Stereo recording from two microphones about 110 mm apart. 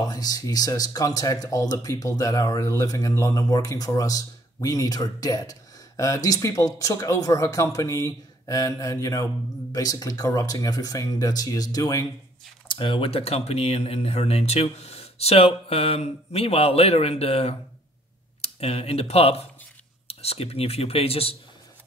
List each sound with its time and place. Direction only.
0.0 s speech: 35° left (ahead or behind)
12.6 s speech: 50° left (ahead or behind)